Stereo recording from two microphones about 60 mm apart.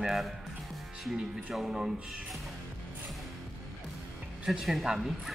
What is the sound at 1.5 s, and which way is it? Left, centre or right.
Speech, centre.